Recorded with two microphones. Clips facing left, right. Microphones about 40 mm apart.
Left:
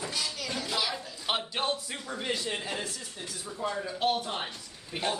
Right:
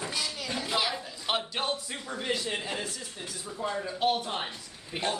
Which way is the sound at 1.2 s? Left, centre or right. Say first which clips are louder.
Even; centre.